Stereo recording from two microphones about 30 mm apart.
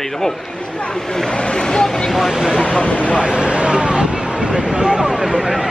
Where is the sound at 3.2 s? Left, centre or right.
Right.